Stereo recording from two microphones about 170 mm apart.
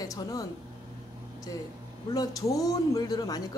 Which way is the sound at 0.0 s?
20° left (ahead or behind).